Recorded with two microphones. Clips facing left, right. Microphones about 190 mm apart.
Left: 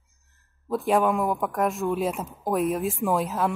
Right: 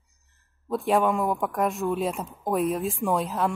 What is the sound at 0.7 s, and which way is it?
Speech, centre (ahead or behind).